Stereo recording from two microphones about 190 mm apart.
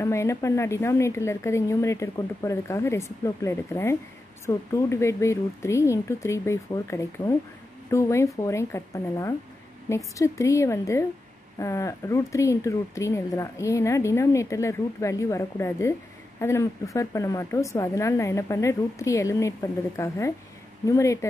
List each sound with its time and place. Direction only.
0.0 s speech: 15° left (ahead or behind)